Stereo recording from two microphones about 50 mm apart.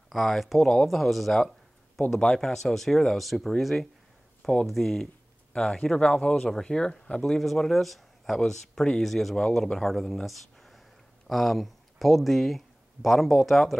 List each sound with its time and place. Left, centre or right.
0.1 s speech: centre
2.0 s speech: centre
2.5 s speech: centre
4.4 s speech: centre
4.6 s speech: centre
5.5 s speech: centre
7.3 s speech: centre